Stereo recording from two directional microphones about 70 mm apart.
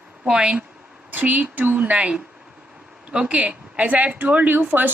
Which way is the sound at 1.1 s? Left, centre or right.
Right.